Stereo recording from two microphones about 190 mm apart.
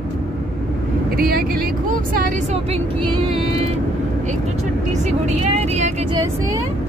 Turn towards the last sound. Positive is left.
turn(degrees=-35)  # may be behind; listen again after turning